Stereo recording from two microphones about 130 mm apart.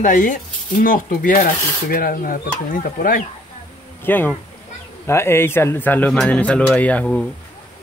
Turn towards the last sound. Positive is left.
turn(degrees=10)  # may be behind; listen again after turning